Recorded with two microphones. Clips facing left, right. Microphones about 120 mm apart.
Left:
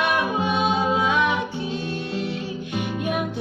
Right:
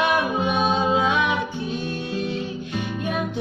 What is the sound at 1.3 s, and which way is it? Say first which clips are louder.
Music: even; 15° left (ahead or behind).